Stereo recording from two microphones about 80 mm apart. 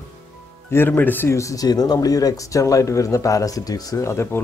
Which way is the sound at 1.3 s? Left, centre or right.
Left.